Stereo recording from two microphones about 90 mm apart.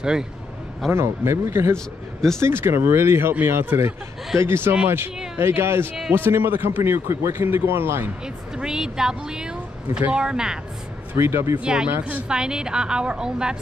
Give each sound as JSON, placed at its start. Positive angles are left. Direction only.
{"t": 0.0, "sound": "speech", "side_deg": -10}
{"t": 0.9, "sound": "a man's voice", "side_deg": -30}
{"t": 8.5, "sound": "speech", "side_deg": -5}
{"t": 11.1, "sound": "a man's voice", "side_deg": -30}
{"t": 11.6, "sound": "speech", "side_deg": -10}